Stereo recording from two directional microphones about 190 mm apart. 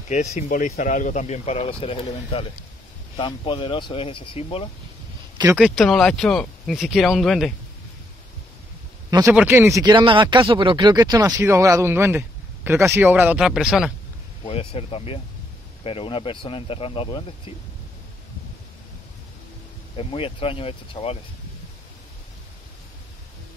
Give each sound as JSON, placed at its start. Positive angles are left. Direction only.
{"t": 0.1, "sound": "speech", "side_deg": 40}
{"t": 5.6, "sound": "speech", "side_deg": 0}
{"t": 9.2, "sound": "speech", "side_deg": -10}
{"t": 14.4, "sound": "speech", "side_deg": 30}
{"t": 20.0, "sound": "speech", "side_deg": 30}